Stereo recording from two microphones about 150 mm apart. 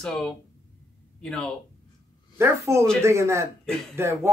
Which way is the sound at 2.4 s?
20° right (ahead or behind).